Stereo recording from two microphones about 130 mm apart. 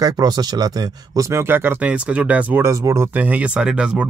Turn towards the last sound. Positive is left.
turn(degrees=-5)  # may be behind; listen again after turning